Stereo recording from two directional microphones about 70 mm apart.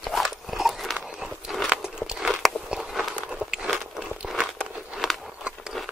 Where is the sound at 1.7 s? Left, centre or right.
Centre.